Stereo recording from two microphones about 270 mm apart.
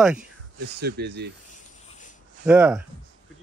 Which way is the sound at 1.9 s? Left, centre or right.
Left.